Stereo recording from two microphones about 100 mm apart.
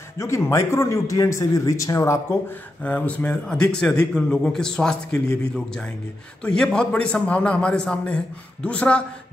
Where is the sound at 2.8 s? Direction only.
15° left (ahead or behind).